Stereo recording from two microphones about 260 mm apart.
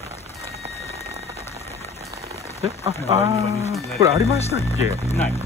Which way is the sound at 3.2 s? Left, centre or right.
Right.